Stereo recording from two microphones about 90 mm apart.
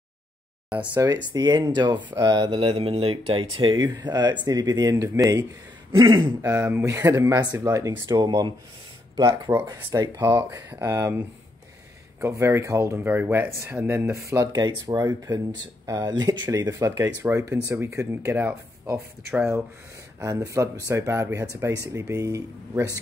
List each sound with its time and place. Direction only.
0.7 s speech: 15° right (ahead or behind)
1.0 s speech: 50° right (ahead or behind)
2.5 s speech: 90° right
3.8 s speech: 50° right (ahead or behind)
5.9 s speech: 65° right (ahead or behind)
6.4 s speech: 30° right (ahead or behind)
7.9 s speech: 55° right (ahead or behind)
9.1 s speech: 40° right (ahead or behind)
12.2 s speech: 30° right (ahead or behind)
20.2 s speech: 35° right (ahead or behind)